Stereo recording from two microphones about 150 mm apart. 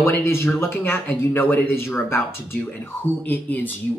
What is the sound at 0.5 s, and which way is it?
Speech, 15° left (ahead or behind).